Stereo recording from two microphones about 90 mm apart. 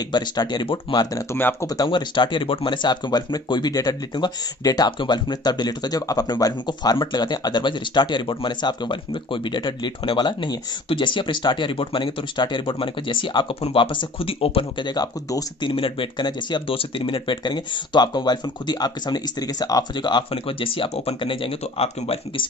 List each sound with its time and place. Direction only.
0.1 s speech: 55° left (ahead or behind)
0.9 s speech: 80° left
1.3 s speech: 25° left (ahead or behind)
1.9 s speech: 60° left (ahead or behind); by 2.7 s 75° left (ahead or behind)
2.7 s speech: 55° left (ahead or behind); by 14.9 s 85° left
15.0 s speech: 50° left (ahead or behind)
15.7 s speech: 75° left (ahead or behind); by 16.6 s 55° left (ahead or behind)
16.6 s speech: 85° left